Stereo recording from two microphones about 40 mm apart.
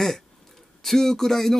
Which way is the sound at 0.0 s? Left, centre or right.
Centre.